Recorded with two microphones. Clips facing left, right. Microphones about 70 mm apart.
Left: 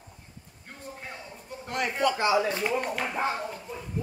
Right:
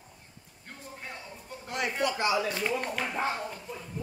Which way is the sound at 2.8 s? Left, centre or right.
Centre.